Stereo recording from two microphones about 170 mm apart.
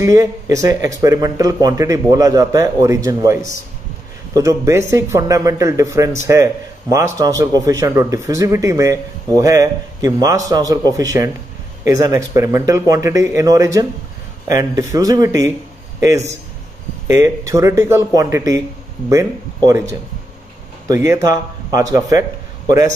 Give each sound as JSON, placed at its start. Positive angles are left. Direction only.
{"t": 0.0, "sound": "speech", "side_deg": -20}
{"t": 17.1, "sound": "speech", "side_deg": -15}